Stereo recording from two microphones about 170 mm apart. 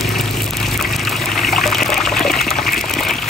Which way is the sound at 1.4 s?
Centre (ahead or behind).